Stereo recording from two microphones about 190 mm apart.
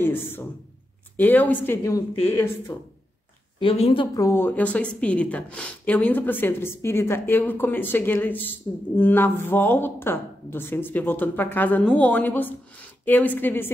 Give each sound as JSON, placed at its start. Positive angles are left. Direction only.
{"t": 0.0, "sound": "a woman's voice", "side_deg": 10}
{"t": 3.5, "sound": "a woman's voice", "side_deg": 30}